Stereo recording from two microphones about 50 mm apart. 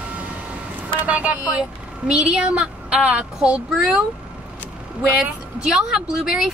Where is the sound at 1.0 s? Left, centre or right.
Right.